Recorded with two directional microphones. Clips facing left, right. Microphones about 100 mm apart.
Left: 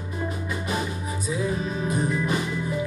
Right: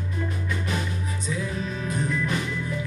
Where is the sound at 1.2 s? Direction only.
15° left (ahead or behind).